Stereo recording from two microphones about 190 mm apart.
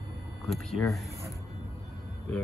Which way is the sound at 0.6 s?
Centre (ahead or behind).